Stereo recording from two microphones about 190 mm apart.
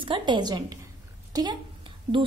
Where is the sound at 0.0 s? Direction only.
25° right (ahead or behind).